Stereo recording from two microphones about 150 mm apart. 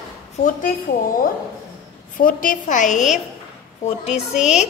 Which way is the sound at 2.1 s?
65° left (ahead or behind).